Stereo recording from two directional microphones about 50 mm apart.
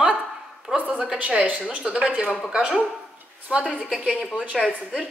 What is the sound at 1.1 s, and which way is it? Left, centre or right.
A woman's voice, right.